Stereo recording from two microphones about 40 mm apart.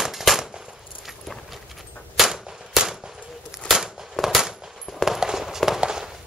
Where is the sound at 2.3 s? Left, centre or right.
Centre.